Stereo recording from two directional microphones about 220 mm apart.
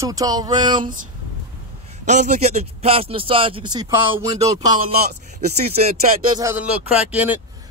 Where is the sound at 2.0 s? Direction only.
35° right (ahead or behind); by 4.9 s 15° right (ahead or behind).